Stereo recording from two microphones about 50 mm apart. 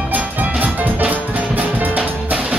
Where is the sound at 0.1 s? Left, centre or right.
Right.